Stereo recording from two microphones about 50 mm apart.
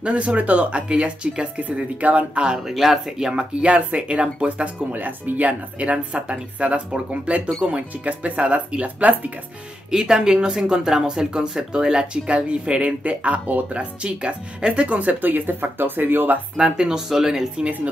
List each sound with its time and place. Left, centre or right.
0.0 s speech: right
2.6 s speech: centre; by 5.5 s right
5.5 s speech: right
9.8 s speech: centre; by 16.3 s right
16.5 s speech: centre